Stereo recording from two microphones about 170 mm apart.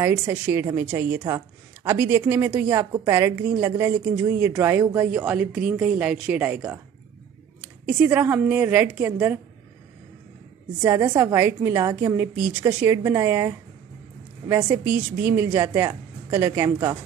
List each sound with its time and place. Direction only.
0.0 s a woman's voice: 15° right (ahead or behind)
10.8 s a woman's voice: 15° right (ahead or behind)
15.2 s a woman's voice: 15° right (ahead or behind)